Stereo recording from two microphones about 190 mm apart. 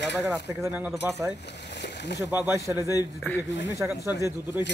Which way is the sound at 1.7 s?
65° left (ahead or behind).